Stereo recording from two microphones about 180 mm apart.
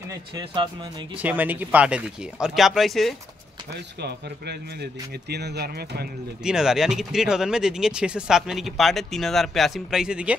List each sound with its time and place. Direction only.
1.1 s speech: 10° right (ahead or behind)
5.3 s speech: 65° right (ahead or behind)
6.4 s speech: 5° right (ahead or behind)